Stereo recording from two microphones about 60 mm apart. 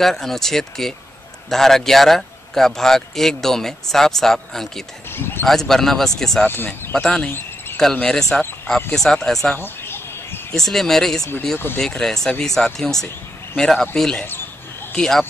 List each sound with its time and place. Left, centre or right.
0.0 s a man's voice: centre
5.1 s a sound: left
5.5 s a man's voice: centre
6.4 s speech: left
6.9 s speech: centre
7.2 s cricket: left
7.7 s speech: centre
9.6 s a sound: left
10.5 s a man's voice: centre
11.5 s speech: left
12.0 s a man's voice: centre